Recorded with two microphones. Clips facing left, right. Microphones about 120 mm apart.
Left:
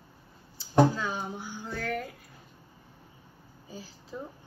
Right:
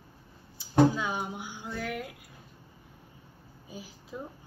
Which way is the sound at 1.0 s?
15° right (ahead or behind).